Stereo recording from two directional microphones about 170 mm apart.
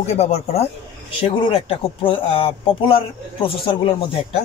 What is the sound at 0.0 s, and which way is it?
Speech, 35° left (ahead or behind).